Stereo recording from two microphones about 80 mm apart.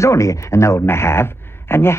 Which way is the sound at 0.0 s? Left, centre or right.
Left.